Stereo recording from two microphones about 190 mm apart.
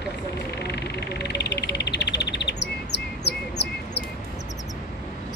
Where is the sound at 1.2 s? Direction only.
60° left (ahead or behind).